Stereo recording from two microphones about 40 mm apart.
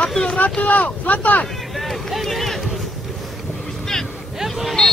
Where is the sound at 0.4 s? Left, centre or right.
Left.